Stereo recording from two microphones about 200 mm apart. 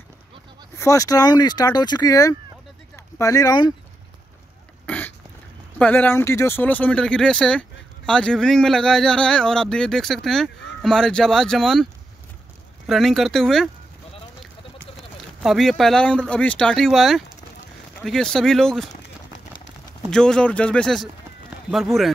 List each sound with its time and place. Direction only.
0.7 s speech: 15° left (ahead or behind)
4.8 s throat clearing: 5° left (ahead or behind)
5.8 s speech: 10° left (ahead or behind)
15.0 s speech: centre (ahead or behind)
20.1 s speech: 5° left (ahead or behind)